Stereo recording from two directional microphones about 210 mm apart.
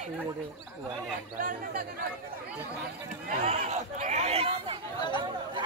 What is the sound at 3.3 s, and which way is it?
Speech, 30° right (ahead or behind).